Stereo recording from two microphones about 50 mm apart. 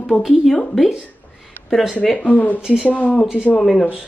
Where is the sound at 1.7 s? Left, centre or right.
Centre.